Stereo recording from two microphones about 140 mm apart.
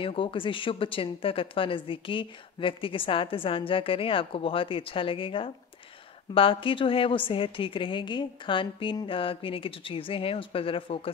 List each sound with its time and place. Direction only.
0.0 s a woman's voice: 40° left (ahead or behind)